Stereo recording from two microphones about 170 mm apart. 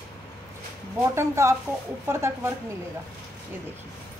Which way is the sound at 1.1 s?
15° right (ahead or behind).